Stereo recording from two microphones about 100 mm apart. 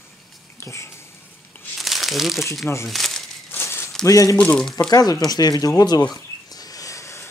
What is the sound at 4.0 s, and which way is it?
Speech, 35° left (ahead or behind).